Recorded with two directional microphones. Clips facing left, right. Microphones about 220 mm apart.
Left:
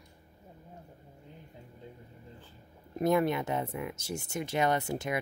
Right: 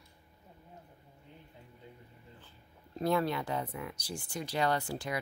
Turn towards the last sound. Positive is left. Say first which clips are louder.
# left 3 dB
turn(degrees=20)  # may be behind; listen again after turning